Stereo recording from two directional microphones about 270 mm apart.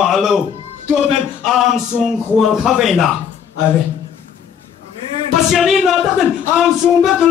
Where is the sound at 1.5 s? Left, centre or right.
Centre.